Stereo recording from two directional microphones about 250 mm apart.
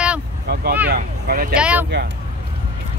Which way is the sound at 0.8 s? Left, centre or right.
Right.